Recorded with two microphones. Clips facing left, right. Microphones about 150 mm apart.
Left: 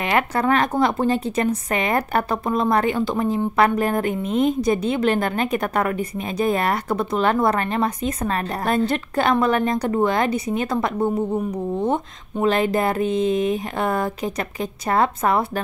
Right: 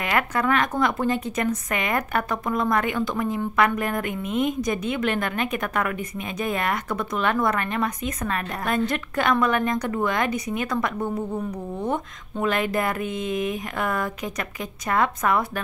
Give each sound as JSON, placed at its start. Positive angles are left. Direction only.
{"t": 0.0, "sound": "a woman's voice", "side_deg": 30}